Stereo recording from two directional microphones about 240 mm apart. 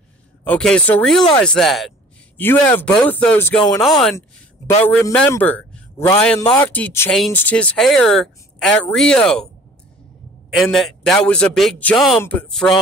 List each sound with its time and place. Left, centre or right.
0.4 s a woman's voice: centre
4.9 s a man's voice: centre
10.5 s a woman's voice: centre